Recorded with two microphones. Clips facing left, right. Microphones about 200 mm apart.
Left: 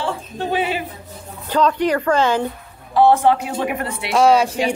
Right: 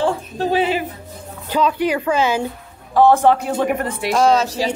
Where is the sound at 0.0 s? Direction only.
40° right (ahead or behind).